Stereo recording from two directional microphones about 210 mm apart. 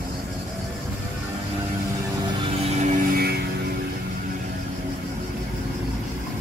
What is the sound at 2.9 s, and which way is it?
Vehicle, 45° right (ahead or behind).